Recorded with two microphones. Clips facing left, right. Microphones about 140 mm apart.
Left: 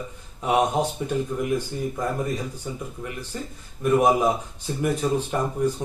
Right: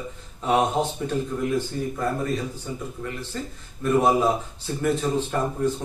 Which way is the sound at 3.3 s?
15° left (ahead or behind).